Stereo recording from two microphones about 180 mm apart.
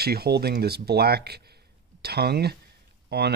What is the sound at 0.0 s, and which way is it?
Speech, 60° right (ahead or behind).